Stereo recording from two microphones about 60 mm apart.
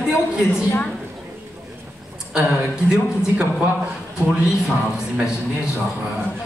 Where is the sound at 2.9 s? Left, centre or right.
Centre.